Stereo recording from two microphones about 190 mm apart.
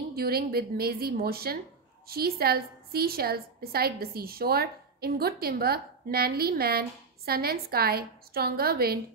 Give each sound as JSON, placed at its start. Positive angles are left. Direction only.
{"t": 0.1, "sound": "a woman's voice", "side_deg": -55}